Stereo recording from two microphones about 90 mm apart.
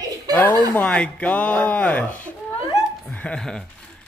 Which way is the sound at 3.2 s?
5° left (ahead or behind).